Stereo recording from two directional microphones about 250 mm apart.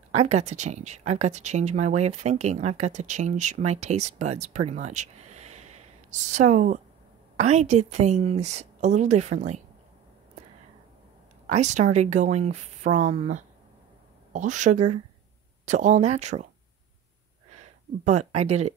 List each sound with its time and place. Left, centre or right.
0.1 s speech: right
11.4 s speech: right
17.6 s speech: right